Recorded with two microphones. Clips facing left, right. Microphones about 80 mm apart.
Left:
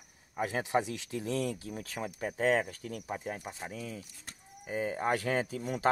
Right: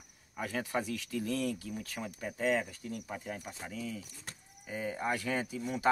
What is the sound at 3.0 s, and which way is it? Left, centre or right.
Speech, left.